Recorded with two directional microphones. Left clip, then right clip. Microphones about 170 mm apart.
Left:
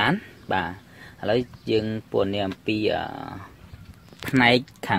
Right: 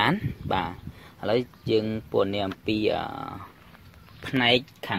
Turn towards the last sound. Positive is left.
turn(degrees=25)  # may be behind; listen again after turning